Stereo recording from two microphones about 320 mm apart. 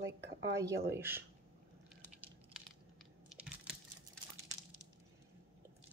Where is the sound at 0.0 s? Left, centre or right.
Right.